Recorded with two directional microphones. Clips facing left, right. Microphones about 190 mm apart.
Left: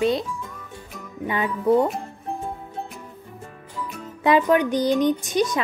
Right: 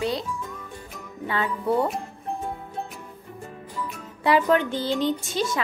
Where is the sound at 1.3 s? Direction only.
20° left (ahead or behind).